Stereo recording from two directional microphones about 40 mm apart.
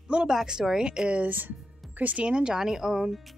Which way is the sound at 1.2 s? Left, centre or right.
Right.